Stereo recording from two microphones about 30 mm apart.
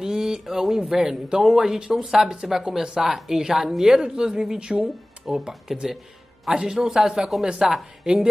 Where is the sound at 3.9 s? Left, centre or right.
Right.